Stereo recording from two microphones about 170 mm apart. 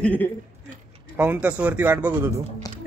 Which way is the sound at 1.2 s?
10° right (ahead or behind).